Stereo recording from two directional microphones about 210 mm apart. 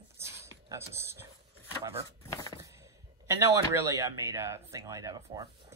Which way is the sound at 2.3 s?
15° left (ahead or behind).